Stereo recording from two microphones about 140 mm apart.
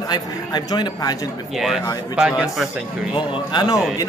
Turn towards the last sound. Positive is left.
turn(degrees=30)  # may be behind; listen again after turning